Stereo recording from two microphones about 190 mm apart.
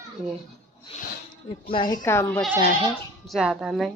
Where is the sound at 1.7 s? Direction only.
25° left (ahead or behind).